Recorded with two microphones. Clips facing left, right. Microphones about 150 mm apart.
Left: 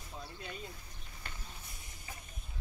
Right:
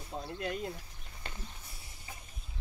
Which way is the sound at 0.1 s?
60° right (ahead or behind).